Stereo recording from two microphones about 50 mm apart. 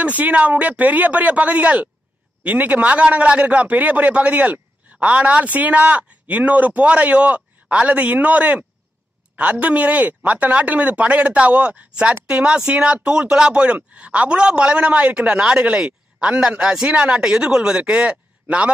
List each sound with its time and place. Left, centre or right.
0.0 s speech: right